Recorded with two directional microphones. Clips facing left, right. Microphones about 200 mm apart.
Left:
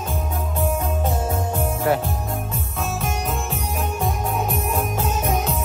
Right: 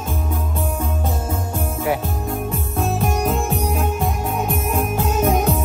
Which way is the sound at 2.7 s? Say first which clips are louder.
Right 6 dB; 50° right (ahead or behind).